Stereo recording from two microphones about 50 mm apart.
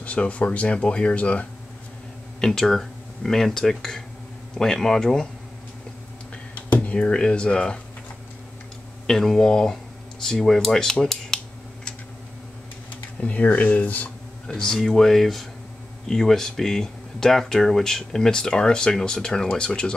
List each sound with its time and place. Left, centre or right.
0.0 s speech: left
2.4 s speech: centre
6.8 s speech: left
9.0 s speech: centre
13.2 s speech: left
14.5 s speech: centre